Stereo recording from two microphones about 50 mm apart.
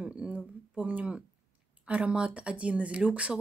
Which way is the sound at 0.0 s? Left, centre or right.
Right.